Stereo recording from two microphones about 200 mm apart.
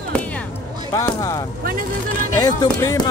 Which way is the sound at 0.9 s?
15° left (ahead or behind).